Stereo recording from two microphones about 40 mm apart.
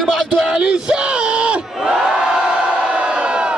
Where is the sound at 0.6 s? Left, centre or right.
Right.